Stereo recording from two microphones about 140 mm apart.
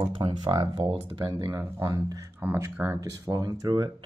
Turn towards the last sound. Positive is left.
turn(degrees=-30)  # may be behind; listen again after turning